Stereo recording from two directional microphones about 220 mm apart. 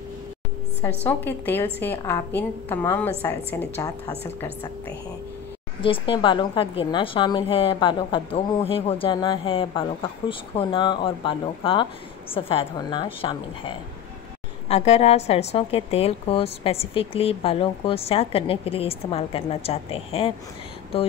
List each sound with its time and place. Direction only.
1.0 s a woman's voice: 10° left (ahead or behind)
5.8 s a woman's voice: 25° left (ahead or behind)